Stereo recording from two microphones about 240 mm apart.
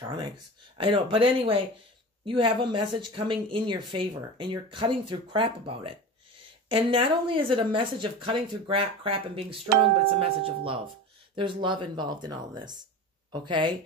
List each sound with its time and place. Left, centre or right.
0.7 s speech: right